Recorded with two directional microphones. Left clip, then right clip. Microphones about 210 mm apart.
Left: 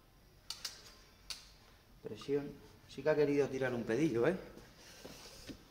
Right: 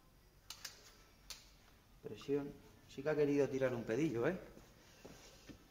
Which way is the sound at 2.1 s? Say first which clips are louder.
Left 3 dB; 15° right (ahead or behind).